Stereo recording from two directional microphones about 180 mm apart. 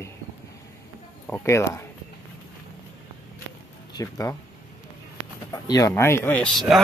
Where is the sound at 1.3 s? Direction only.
15° left (ahead or behind).